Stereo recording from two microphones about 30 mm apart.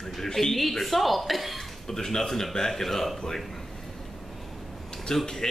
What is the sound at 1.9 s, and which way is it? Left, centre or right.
A man's voice, centre.